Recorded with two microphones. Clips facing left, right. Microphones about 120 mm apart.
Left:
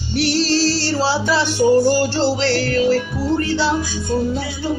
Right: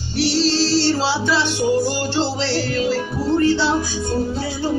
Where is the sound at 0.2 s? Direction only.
50° left (ahead or behind).